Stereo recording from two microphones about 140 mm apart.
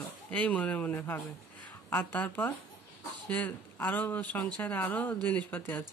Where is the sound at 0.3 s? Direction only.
10° left (ahead or behind).